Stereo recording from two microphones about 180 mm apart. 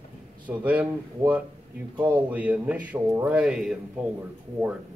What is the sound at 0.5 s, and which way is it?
A man's voice, 10° right (ahead or behind).